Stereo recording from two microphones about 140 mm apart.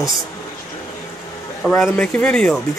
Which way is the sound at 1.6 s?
10° left (ahead or behind).